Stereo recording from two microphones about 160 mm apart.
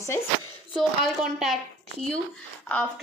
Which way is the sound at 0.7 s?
5° right (ahead or behind).